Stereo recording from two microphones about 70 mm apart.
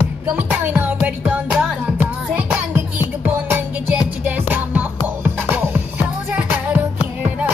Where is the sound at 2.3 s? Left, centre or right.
Right.